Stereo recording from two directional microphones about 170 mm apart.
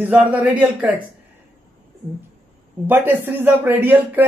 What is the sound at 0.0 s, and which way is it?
Speech, 10° right (ahead or behind).